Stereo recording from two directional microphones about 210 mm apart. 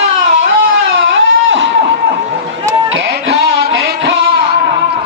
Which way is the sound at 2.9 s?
50° right (ahead or behind).